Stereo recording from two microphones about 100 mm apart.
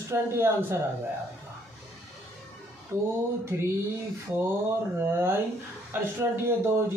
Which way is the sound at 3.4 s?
25° right (ahead or behind).